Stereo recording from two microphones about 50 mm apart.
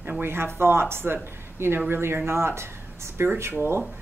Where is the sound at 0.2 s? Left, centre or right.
Right.